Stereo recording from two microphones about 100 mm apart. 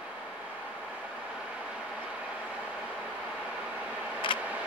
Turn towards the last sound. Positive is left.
turn(degrees=60)  # may be behind; listen again after turning